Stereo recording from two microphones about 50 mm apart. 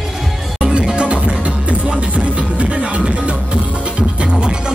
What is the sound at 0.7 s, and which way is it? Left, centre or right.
Music, right.